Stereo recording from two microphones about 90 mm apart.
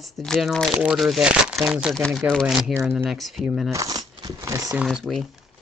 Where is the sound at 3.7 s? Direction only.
40° right (ahead or behind).